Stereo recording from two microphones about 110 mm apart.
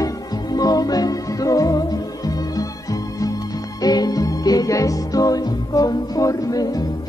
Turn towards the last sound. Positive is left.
turn(degrees=35)  # may be behind; listen again after turning